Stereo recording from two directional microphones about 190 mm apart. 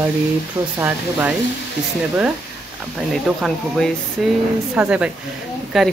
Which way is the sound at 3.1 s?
Centre (ahead or behind).